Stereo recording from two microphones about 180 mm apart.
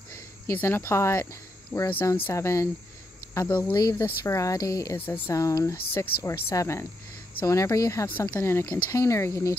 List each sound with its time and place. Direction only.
0.5 s speech: 15° left (ahead or behind)
3.7 s speech: 20° left (ahead or behind)